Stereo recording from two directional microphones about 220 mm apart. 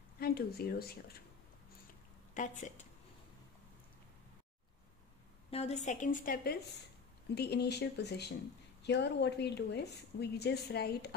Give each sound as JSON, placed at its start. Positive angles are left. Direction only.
{"t": 0.2, "sound": "a woman's voice", "side_deg": 45}
{"t": 2.3, "sound": "a woman's voice", "side_deg": 35}
{"t": 5.5, "sound": "a woman's voice", "side_deg": 30}